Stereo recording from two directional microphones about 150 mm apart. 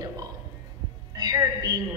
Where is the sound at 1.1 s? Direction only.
25° right (ahead or behind).